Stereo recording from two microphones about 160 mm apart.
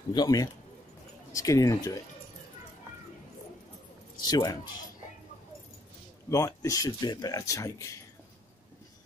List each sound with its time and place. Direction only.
0.1 s speech: 25° left (ahead or behind)
4.3 s speech: 25° left (ahead or behind)
6.3 s speech: 20° left (ahead or behind)